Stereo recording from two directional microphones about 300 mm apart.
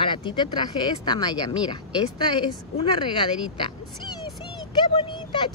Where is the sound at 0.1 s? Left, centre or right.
Centre.